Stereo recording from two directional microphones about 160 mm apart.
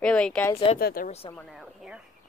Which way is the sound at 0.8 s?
70° left (ahead or behind).